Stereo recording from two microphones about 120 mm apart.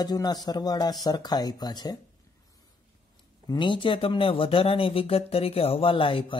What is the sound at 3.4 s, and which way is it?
Speech, 40° left (ahead or behind).